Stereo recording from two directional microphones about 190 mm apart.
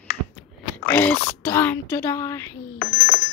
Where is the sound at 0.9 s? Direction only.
10° left (ahead or behind).